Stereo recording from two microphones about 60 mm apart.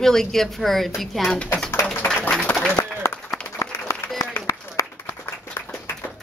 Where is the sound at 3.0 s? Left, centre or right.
Left.